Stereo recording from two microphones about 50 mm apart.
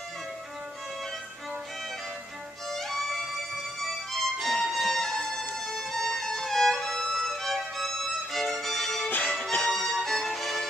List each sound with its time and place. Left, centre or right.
2.7 s music: centre
5.7 s violin: centre
9.1 s music: left
9.7 s music: centre